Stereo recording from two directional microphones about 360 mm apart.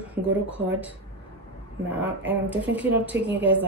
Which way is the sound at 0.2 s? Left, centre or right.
Right.